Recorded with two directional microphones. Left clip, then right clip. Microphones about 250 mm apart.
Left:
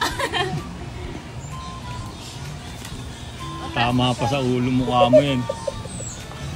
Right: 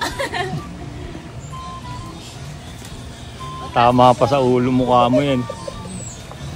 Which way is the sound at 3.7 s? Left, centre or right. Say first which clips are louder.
Right 10 dB; right.